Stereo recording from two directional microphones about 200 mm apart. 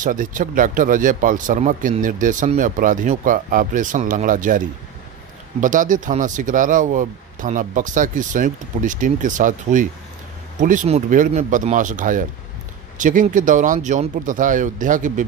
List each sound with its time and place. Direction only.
0.0 s speech: 40° right (ahead or behind)